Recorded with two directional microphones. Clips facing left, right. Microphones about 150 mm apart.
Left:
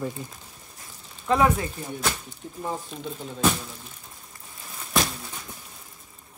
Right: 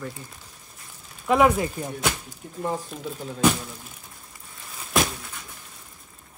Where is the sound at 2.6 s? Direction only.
5° right (ahead or behind).